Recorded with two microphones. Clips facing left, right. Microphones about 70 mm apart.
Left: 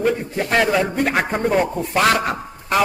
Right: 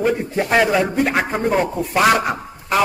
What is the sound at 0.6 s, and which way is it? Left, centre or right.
A man's voice, centre.